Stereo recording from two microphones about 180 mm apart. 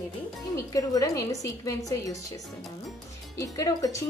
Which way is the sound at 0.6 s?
20° left (ahead or behind).